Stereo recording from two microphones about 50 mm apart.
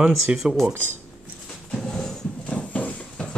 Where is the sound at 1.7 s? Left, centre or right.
Centre.